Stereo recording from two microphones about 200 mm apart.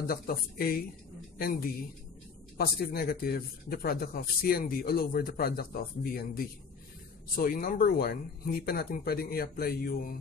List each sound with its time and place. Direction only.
0.0 s speech: 50° left (ahead or behind)
2.5 s speech: 50° left (ahead or behind)